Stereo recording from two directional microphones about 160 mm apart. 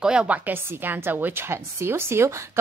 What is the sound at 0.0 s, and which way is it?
A woman's voice, 5° right (ahead or behind).